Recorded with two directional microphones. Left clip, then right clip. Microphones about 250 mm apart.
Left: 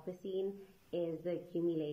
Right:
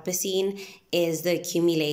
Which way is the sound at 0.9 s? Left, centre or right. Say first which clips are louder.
Right 14 dB; right.